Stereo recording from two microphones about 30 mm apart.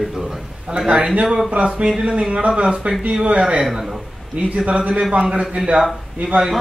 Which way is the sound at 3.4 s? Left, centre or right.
Right.